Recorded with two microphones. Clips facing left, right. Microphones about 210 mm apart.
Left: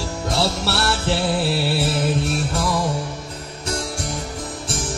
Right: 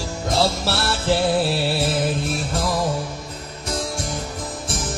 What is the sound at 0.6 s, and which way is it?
Music, 65° left (ahead or behind).